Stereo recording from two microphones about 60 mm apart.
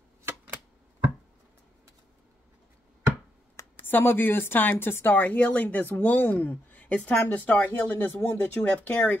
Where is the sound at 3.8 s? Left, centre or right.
Left.